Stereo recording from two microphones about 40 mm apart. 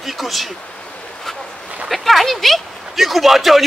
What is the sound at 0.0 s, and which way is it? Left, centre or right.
Speech, centre.